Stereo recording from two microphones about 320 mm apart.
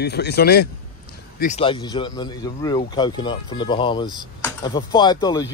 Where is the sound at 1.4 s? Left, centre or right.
Centre.